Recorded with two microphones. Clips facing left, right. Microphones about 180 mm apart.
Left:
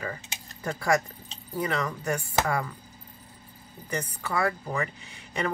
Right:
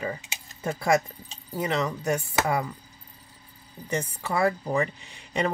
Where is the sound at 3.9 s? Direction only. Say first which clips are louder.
Right 2 dB; 25° right (ahead or behind).